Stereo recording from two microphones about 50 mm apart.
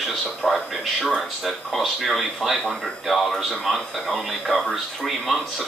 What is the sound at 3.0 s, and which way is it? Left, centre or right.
A man's voice, centre.